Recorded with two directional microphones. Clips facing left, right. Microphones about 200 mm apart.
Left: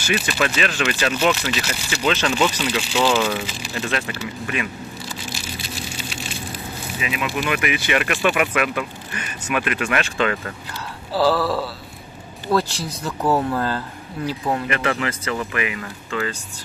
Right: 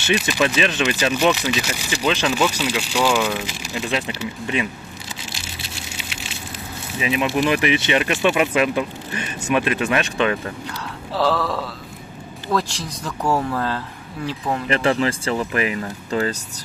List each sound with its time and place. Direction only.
0.0 s speech: 20° right (ahead or behind)
7.0 s speech: 30° right (ahead or behind)
11.1 s a man's voice: 5° left (ahead or behind)
14.7 s speech: 30° right (ahead or behind)